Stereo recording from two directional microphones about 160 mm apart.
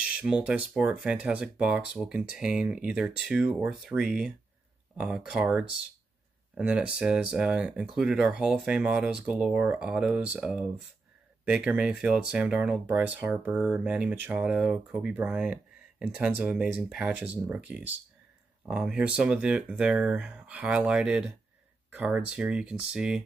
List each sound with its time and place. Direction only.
0.0 s speech: 10° right (ahead or behind)